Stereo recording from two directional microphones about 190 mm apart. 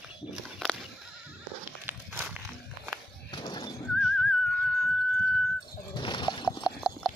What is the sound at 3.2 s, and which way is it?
Horse, 20° left (ahead or behind).